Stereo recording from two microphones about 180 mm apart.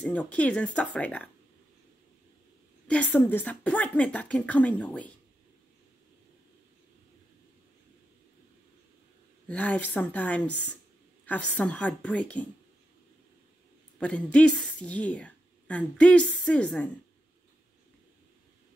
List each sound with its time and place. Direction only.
0.0 s a woman's voice: 5° left (ahead or behind)
2.9 s a woman's voice: 10° left (ahead or behind)
9.5 s a woman's voice: 10° left (ahead or behind)
13.9 s a woman's voice: 5° left (ahead or behind)